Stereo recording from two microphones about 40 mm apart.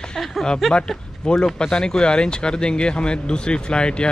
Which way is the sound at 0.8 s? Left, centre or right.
Centre.